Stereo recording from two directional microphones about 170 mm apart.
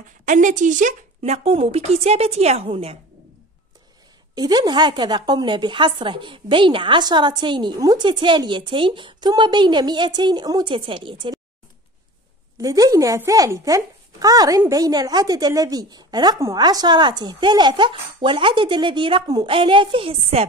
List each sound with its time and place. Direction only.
0.2 s speech: 50° right (ahead or behind)
4.4 s a woman's voice: 25° right (ahead or behind)
12.5 s a woman's voice: 20° right (ahead or behind); by 20.4 s 35° right (ahead or behind)